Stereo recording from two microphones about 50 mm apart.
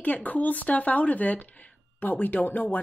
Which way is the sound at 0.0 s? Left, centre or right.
Left.